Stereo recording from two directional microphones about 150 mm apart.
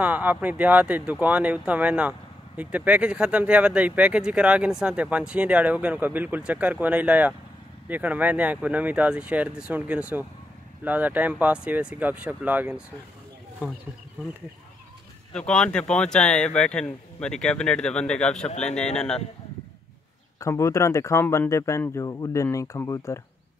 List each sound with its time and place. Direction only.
0.0 s speech: 10° right (ahead or behind)
15.6 s speech: 5° left (ahead or behind)
20.3 s speech: 20° left (ahead or behind)